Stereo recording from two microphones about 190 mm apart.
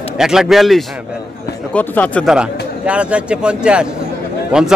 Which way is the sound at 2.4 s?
5° right (ahead or behind).